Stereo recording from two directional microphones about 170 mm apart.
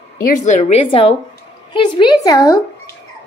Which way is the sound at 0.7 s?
30° left (ahead or behind).